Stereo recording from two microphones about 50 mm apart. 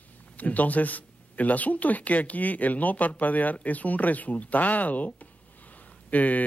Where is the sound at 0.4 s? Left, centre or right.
Left.